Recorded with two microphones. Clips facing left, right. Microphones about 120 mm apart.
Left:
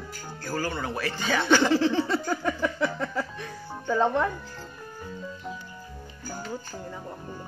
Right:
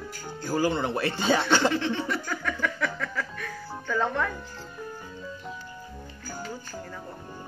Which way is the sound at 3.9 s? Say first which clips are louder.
Left 4 dB; 20° left (ahead or behind).